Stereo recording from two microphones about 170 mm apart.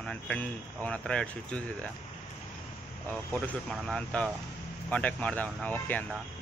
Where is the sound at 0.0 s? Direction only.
5° left (ahead or behind).